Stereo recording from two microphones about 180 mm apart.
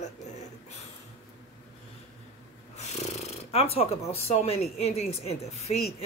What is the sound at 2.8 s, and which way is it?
Speech, 40° left (ahead or behind).